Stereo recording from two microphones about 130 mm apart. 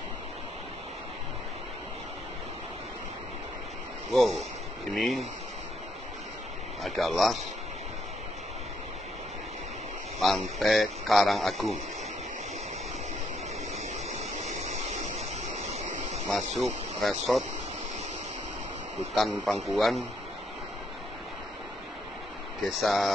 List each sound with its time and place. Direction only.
4.1 s speech: centre (ahead or behind)
6.8 s speech: centre (ahead or behind)
10.2 s speech: centre (ahead or behind)
14.8 s a sound: 60° right (ahead or behind)
16.3 s speech: centre (ahead or behind)
19.1 s speech: centre (ahead or behind)
22.7 s speech: centre (ahead or behind)